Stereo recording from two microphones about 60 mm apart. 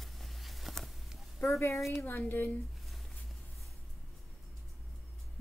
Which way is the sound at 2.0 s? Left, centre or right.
Left.